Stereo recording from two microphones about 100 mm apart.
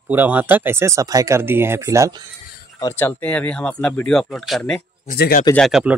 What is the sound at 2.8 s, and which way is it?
Speech, 20° left (ahead or behind).